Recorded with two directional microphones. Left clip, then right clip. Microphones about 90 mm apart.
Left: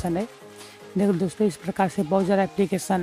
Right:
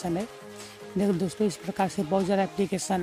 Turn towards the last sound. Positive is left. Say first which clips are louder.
# left 4 dB
turn(degrees=35)  # may be behind; listen again after turning